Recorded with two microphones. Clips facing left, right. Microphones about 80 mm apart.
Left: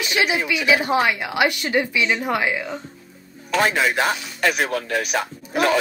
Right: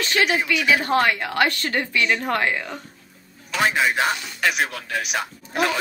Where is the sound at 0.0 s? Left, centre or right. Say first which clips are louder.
Even; centre.